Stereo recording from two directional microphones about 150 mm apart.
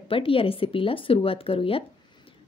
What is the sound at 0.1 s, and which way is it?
Speech, 35° left (ahead or behind).